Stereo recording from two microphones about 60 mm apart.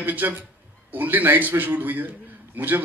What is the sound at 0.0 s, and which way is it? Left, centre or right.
Speech, right.